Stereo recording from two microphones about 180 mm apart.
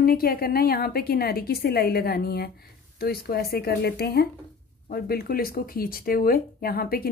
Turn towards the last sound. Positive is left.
turn(degrees=55)  # may be behind; listen again after turning